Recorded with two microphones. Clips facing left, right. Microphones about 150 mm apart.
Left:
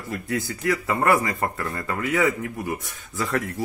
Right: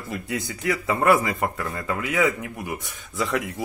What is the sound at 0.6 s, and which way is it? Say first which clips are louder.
Speech: right 2 dB; centre (ahead or behind).